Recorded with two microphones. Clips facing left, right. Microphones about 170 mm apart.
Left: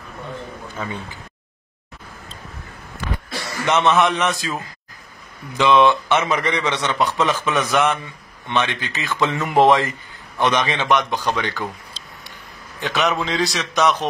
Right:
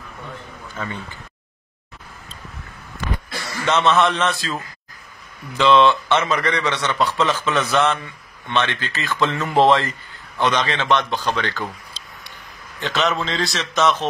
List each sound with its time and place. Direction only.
0.8 s a man's voice: 10° left (ahead or behind)
3.6 s a man's voice: 15° left (ahead or behind)
12.8 s a man's voice: 15° left (ahead or behind)